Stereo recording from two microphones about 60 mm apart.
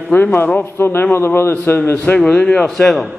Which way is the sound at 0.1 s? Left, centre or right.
Left.